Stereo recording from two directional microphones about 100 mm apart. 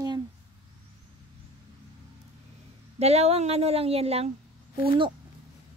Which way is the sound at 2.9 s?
90° right.